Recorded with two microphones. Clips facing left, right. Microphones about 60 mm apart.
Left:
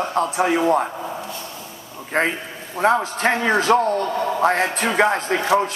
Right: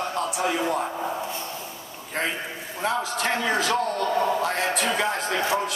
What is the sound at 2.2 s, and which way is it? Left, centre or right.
A man's voice, left.